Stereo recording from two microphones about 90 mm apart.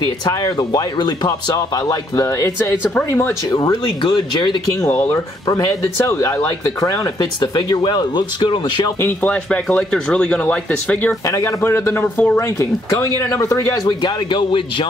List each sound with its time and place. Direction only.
0.0 s a man's voice: 55° left (ahead or behind); by 3.3 s 25° left (ahead or behind)
4.0 s speech: 65° left (ahead or behind)
5.5 s speech: 30° left (ahead or behind)
6.8 s speech: 45° left (ahead or behind)
9.2 s speech: 15° left (ahead or behind)
11.2 s a man's voice: 35° left (ahead or behind)
12.4 s speech: 40° left (ahead or behind)
13.8 s speech: 60° left (ahead or behind)